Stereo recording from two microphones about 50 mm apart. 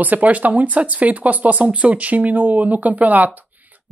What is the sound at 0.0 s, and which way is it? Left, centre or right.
A woman's voice, right.